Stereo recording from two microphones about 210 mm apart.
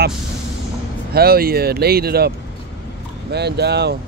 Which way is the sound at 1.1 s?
45° right (ahead or behind).